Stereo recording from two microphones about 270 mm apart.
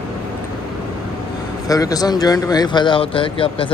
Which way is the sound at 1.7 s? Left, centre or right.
Centre.